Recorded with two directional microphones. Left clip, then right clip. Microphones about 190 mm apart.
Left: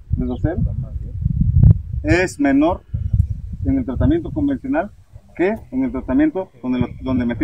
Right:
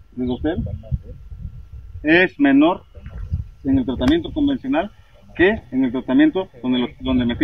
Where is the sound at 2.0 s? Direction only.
15° left (ahead or behind).